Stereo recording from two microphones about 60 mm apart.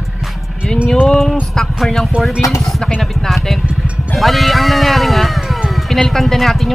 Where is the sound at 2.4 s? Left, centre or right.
Left.